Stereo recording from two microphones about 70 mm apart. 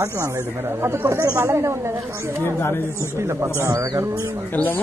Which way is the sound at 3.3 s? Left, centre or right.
Right.